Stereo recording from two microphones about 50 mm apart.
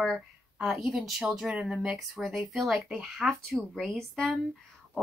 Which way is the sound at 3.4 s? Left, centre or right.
Centre.